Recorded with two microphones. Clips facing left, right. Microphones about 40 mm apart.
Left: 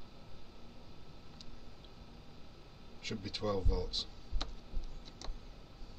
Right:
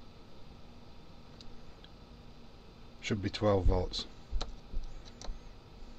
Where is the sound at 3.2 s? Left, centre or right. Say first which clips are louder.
Right 7 dB; right.